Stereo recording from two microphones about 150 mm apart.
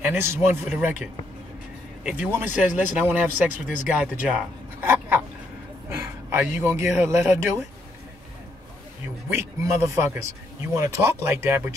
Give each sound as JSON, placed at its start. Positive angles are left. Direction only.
{"t": 0.0, "sound": "speech", "side_deg": -15}
{"t": 2.0, "sound": "speech", "side_deg": -10}
{"t": 9.3, "sound": "speech", "side_deg": -15}